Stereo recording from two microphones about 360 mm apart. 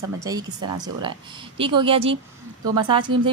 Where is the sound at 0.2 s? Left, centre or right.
Centre.